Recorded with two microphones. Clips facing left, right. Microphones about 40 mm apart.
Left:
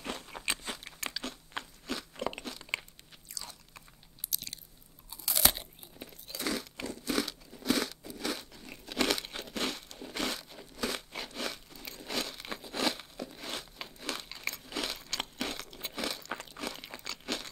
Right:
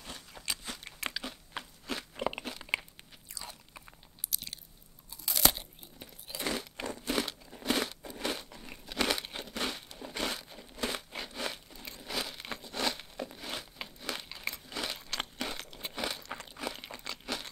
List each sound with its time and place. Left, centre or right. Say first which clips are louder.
0.0 s crunch: left 7 dB; left
0.4 s crunch: left 2 dB; left
0.7 s a sound: right 1 dB; centre
1.6 s crunch: left 2 dB; centre
1.9 s crunch: right 2 dB; centre
3.3 s biting: right 1 dB; centre
4.3 s chewing: even; centre
5.3 s crunch: right 1 dB; centre
6.2 s a sound: even; centre
7.1 s crunch: left 1 dB; centre
8.1 s crumpling: right 1 dB; centre
10.9 s a sound: even; centre
16.3 s crunch: even; centre